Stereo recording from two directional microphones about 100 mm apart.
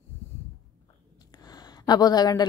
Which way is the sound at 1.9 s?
40° left (ahead or behind).